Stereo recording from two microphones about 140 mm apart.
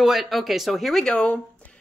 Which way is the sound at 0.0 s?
Centre (ahead or behind).